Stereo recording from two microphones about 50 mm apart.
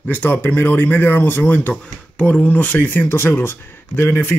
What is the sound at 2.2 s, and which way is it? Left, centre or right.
Speech, left.